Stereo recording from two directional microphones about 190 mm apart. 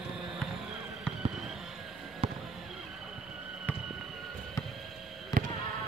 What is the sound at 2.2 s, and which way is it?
Fireworks, 30° right (ahead or behind).